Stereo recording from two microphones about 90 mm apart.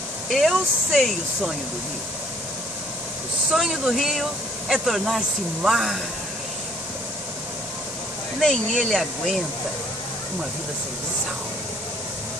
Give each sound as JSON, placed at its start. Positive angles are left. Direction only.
{"t": 0.3, "sound": "speech", "side_deg": 0}
{"t": 3.5, "sound": "speech", "side_deg": -5}
{"t": 8.4, "sound": "speech", "side_deg": 5}